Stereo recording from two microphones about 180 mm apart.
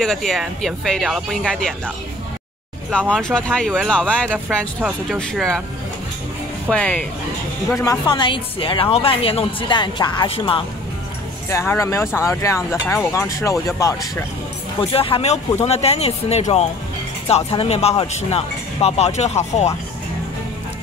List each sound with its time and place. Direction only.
0.0 s speech: centre (ahead or behind)
2.9 s speech: 5° left (ahead or behind)
6.7 s speech: 5° left (ahead or behind)
7.8 s speech: 20° left (ahead or behind)
11.4 s speech: 15° left (ahead or behind)
14.8 s speech: 30° left (ahead or behind)